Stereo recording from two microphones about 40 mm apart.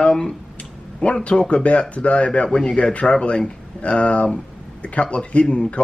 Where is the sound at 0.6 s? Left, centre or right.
Left.